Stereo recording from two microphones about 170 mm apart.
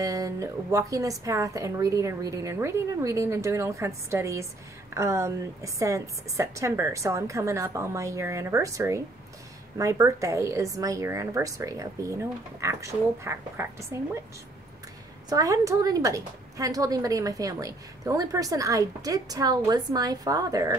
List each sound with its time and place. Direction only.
0.0 s a woman's voice: 20° right (ahead or behind)
15.2 s a woman's voice: 20° right (ahead or behind)